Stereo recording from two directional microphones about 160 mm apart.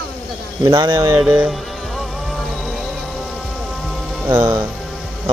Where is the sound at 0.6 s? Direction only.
20° right (ahead or behind).